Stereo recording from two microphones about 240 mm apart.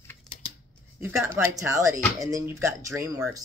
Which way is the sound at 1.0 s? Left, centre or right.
Centre.